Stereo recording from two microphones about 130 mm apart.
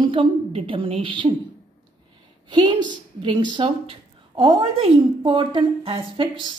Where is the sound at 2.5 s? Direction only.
35° right (ahead or behind).